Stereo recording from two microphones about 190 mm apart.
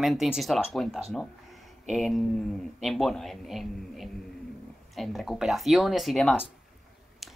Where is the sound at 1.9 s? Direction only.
Centre (ahead or behind).